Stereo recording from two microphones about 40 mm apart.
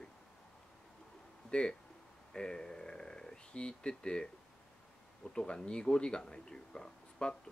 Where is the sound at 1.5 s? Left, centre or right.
Left.